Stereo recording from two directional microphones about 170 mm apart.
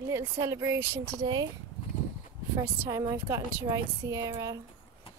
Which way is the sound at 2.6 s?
15° right (ahead or behind).